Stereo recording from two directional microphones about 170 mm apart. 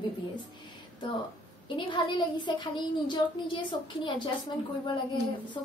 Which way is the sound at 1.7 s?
30° left (ahead or behind).